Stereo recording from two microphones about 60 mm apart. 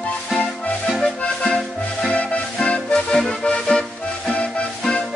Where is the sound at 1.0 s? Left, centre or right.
Centre.